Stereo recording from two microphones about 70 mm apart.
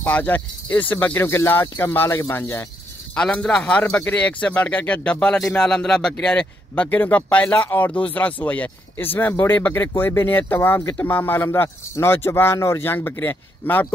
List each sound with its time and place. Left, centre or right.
0.0 s speech: left
3.2 s a man's voice: centre